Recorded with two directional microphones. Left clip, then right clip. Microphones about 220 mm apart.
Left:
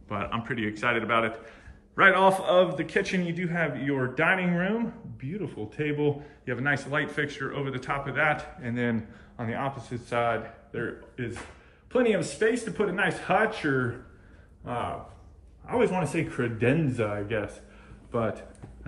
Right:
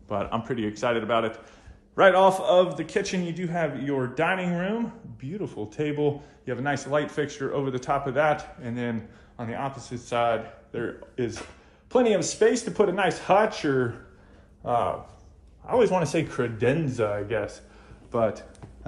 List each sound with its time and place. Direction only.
0.1 s a man's voice: 15° right (ahead or behind)
8.7 s a man's voice: centre (ahead or behind)